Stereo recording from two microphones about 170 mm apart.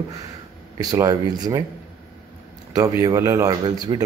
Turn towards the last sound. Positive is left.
turn(degrees=-25)  # may be behind; listen again after turning